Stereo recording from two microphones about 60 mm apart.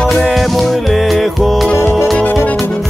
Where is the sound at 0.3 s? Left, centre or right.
Centre.